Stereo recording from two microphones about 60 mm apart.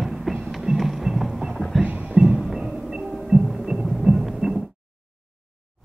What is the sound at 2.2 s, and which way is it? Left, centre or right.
Music, centre.